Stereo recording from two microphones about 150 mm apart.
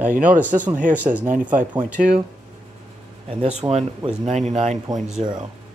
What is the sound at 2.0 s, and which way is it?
Speech, 65° right (ahead or behind).